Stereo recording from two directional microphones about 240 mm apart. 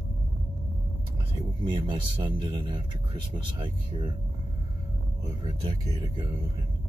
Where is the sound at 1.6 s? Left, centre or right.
Centre.